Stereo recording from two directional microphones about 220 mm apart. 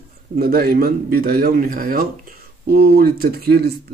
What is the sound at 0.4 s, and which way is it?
Speech, 45° right (ahead or behind).